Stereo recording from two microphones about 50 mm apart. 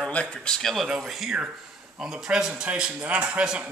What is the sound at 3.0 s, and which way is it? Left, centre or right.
Speech, right.